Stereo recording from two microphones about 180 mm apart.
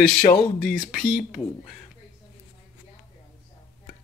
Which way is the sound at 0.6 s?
55° left (ahead or behind).